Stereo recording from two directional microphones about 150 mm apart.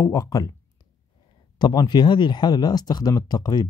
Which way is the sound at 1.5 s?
30° left (ahead or behind).